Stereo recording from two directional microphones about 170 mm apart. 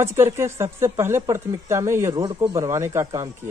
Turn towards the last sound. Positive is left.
turn(degrees=-15)  # may be behind; listen again after turning